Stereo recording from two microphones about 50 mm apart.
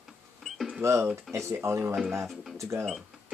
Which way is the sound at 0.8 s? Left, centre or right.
Right.